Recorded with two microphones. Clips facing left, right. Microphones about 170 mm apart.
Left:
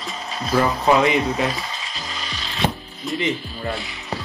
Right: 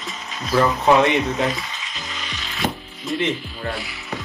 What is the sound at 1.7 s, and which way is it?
Music, 35° left (ahead or behind).